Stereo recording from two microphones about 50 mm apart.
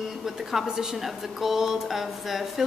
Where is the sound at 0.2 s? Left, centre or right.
Centre.